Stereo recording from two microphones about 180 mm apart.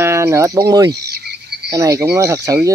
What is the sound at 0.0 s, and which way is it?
Speech, 15° right (ahead or behind).